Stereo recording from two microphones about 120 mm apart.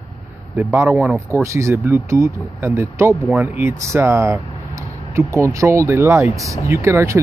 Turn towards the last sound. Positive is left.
turn(degrees=-25)  # may be behind; listen again after turning